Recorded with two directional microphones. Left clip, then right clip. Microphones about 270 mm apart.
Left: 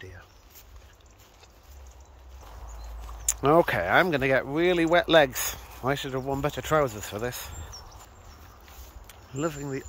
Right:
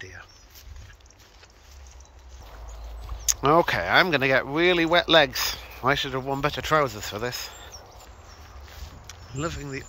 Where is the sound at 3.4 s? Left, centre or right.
Centre.